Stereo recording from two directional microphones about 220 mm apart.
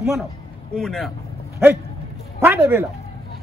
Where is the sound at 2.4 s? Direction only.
10° right (ahead or behind).